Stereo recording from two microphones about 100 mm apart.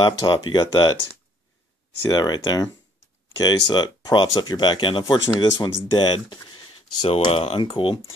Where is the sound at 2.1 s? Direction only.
40° left (ahead or behind).